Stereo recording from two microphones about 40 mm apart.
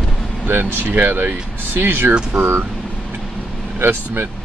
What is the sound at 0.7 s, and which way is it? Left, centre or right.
Speech, right.